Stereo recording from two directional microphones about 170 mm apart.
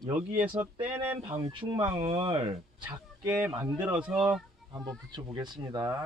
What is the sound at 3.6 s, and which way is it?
Speech, 10° right (ahead or behind).